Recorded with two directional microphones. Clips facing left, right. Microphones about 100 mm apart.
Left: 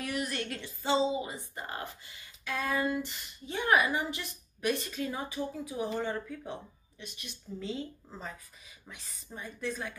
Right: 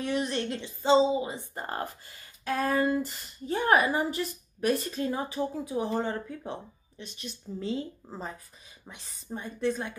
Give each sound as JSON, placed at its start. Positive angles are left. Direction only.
{"t": 0.0, "sound": "a woman's voice", "side_deg": -25}
{"t": 1.5, "sound": "a woman's voice", "side_deg": -40}